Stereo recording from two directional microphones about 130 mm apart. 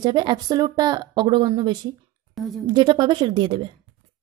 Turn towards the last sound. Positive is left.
turn(degrees=-35)  # may be behind; listen again after turning